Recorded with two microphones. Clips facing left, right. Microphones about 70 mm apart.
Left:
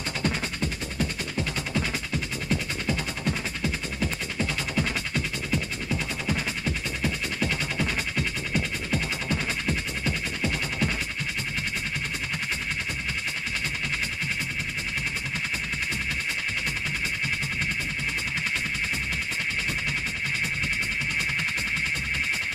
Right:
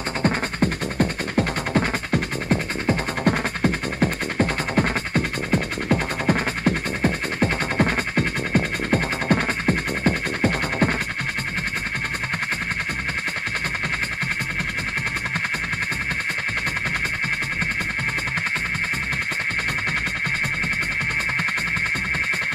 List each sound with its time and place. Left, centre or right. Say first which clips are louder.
0.2 s music: right 8 dB; right